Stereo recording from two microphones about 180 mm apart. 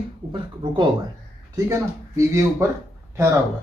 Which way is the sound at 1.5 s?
15° right (ahead or behind).